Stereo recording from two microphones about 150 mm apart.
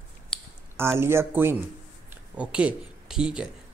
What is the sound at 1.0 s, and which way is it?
Speech, 15° right (ahead or behind).